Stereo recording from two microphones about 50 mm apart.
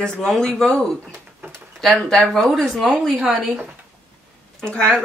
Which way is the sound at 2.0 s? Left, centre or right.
Centre.